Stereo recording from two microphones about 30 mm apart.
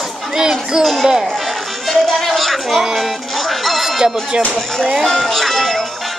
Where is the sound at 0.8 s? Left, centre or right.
Centre.